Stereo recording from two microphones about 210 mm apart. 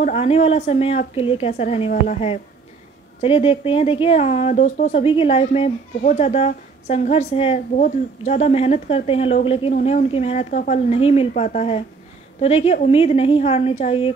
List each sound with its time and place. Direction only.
0.0 s speech: 30° left (ahead or behind)
9.8 s speech: 40° left (ahead or behind)
10.1 s speech: 30° left (ahead or behind)